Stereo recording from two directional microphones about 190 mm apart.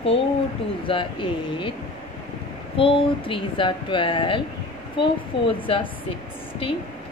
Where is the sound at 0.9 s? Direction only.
25° left (ahead or behind).